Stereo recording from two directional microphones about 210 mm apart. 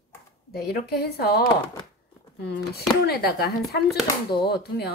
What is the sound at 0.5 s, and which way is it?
Speech, 50° left (ahead or behind).